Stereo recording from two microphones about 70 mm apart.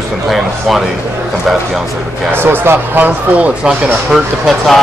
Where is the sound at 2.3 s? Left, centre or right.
Right.